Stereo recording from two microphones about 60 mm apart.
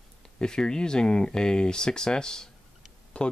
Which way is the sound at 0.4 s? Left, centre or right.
Centre.